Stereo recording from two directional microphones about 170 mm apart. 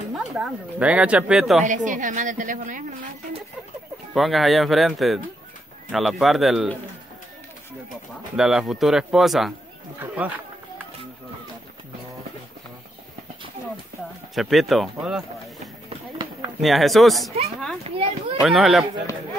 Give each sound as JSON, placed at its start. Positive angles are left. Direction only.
{"t": 0.1, "sound": "speech", "side_deg": 0}
{"t": 1.6, "sound": "a woman's voice", "side_deg": -50}
{"t": 4.1, "sound": "speech", "side_deg": 0}
{"t": 7.9, "sound": "speech", "side_deg": 0}
{"t": 14.3, "sound": "speech", "side_deg": 0}
{"t": 16.6, "sound": "speech", "side_deg": 0}
{"t": 17.8, "sound": "a child's voice", "side_deg": -35}
{"t": 18.4, "sound": "speech", "side_deg": 0}